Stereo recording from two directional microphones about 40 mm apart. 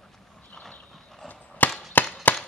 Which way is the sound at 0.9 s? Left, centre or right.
Centre.